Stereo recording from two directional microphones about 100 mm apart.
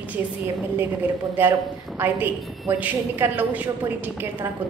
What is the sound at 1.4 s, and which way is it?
A woman's voice, 20° right (ahead or behind).